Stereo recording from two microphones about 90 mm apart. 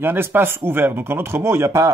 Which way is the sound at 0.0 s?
25° right (ahead or behind).